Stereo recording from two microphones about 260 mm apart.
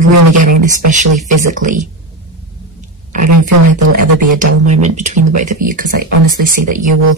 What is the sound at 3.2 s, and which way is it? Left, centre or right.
Speech, right.